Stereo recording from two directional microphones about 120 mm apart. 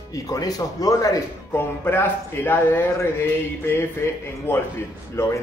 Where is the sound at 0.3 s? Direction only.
30° left (ahead or behind).